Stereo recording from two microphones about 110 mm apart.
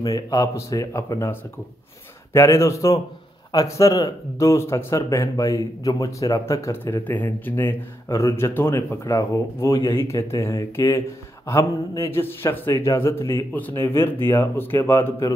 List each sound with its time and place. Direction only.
0.0 s speech: 30° left (ahead or behind)